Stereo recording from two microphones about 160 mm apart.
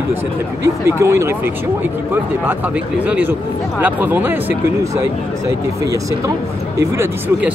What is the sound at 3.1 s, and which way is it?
Speech, 10° right (ahead or behind).